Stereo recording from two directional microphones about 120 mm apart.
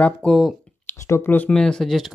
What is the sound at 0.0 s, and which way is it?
Speech, 5° left (ahead or behind).